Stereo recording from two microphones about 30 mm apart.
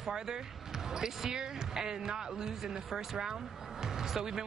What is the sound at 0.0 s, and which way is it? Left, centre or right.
Speech, right.